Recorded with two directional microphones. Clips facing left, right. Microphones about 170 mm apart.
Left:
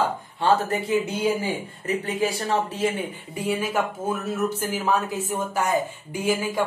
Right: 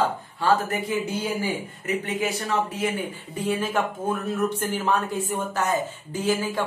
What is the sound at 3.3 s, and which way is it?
Speech, 10° left (ahead or behind).